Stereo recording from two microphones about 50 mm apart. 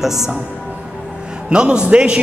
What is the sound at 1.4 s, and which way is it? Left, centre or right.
Speech, centre.